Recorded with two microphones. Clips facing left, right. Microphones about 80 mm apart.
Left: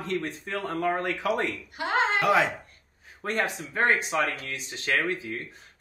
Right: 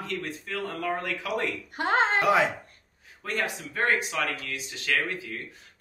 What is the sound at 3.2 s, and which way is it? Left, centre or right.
Speech, left.